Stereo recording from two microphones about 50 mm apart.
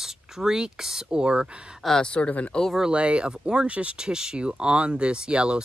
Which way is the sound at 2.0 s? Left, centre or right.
Left.